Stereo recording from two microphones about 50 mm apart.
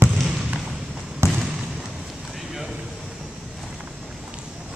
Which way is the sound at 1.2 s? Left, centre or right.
Right.